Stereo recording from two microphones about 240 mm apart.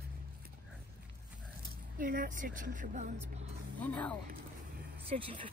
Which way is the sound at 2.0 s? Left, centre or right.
Right.